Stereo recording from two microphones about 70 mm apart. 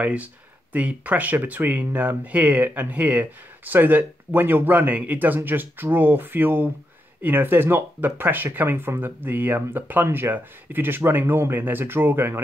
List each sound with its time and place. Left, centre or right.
0.0 s speech: right